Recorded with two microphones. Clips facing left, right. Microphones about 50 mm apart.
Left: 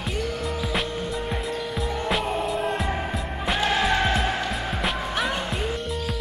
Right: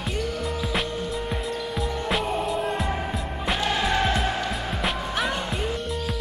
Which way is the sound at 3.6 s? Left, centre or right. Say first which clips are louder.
Left 2 dB; centre.